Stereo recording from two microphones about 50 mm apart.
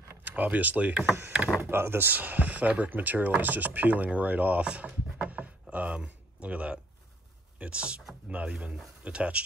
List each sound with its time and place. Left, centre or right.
0.2 s speech: right
1.6 s speech: right
5.2 s a sound: right
7.5 s speech: right